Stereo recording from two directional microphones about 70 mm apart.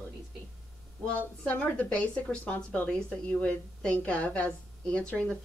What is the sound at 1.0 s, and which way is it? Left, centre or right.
A woman's voice, centre.